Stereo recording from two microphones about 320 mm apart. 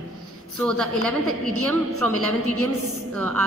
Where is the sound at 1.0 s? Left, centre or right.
Right.